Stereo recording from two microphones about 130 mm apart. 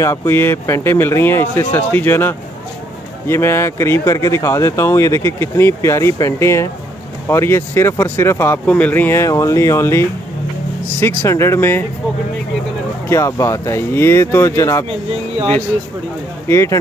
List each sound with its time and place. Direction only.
0.0 s speech: 20° left (ahead or behind)
13.1 s speech: 25° left (ahead or behind)
16.4 s speech: 20° left (ahead or behind)